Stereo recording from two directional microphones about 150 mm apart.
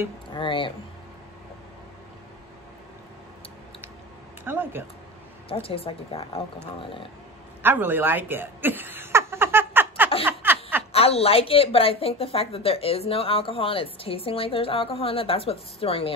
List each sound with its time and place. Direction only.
0.3 s speech: 35° left (ahead or behind)
4.5 s speech: 15° right (ahead or behind)
5.5 s a woman's voice: 40° left (ahead or behind)
7.6 s chuckle: 15° right (ahead or behind)
10.2 s snicker: 15° right (ahead or behind)
10.9 s a woman's voice: 40° left (ahead or behind)